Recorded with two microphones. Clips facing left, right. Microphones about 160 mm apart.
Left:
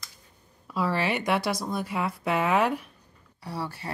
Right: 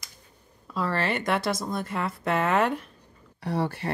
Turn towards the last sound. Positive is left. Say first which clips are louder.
# right 6 dB
turn(degrees=-55)  # may be behind; listen again after turning